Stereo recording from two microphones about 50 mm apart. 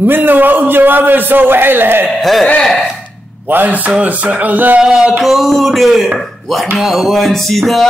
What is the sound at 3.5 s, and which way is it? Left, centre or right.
A man's voice, right.